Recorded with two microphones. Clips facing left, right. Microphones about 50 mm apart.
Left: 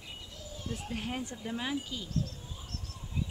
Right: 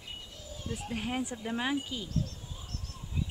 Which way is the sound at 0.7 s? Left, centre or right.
Centre.